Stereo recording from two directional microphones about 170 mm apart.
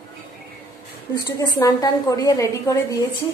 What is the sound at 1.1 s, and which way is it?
A woman's voice, 20° left (ahead or behind).